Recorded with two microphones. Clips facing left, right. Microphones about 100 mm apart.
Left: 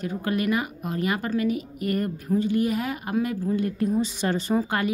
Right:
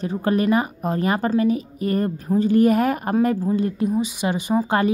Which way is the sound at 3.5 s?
20° right (ahead or behind).